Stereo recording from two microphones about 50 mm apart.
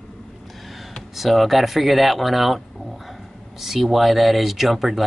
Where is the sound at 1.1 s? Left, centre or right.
Centre.